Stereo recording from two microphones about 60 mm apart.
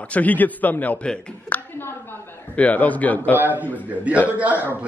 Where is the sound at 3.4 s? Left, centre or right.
Right.